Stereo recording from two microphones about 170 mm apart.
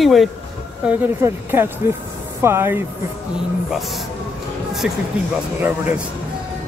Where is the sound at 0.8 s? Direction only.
10° right (ahead or behind).